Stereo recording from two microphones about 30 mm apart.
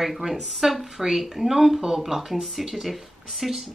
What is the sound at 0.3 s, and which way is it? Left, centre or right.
Speech, centre.